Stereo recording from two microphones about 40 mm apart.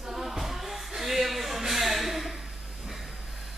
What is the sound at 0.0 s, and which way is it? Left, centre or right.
Music, centre.